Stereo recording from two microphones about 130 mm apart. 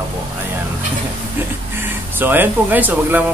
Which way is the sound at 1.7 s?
15° right (ahead or behind).